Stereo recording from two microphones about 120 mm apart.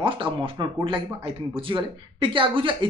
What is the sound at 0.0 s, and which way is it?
Speech, 45° right (ahead or behind).